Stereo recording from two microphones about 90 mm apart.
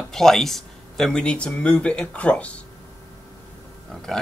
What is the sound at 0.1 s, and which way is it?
A man's voice, 5° left (ahead or behind).